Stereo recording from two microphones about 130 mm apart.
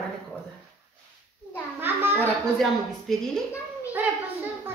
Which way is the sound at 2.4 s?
Centre (ahead or behind).